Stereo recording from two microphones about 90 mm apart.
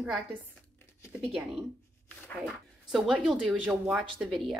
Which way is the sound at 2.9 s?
5° right (ahead or behind).